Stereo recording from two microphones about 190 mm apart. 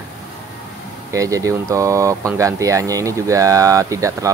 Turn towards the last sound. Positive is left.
turn(degrees=-15)  # may be behind; listen again after turning